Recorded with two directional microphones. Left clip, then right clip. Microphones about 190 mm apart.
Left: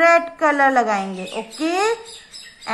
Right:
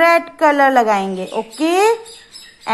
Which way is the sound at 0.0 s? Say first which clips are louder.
Right 2 dB; 40° right (ahead or behind).